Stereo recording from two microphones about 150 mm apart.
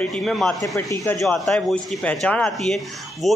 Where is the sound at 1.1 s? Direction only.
Centre (ahead or behind).